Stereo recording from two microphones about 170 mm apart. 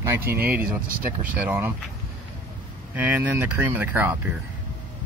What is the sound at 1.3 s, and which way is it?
Speech, 10° right (ahead or behind).